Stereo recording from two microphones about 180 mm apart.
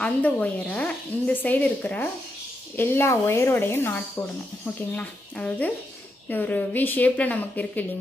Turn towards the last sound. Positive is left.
turn(degrees=10)  # may be behind; listen again after turning